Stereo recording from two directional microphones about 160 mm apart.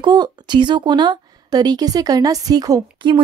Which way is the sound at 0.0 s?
25° right (ahead or behind).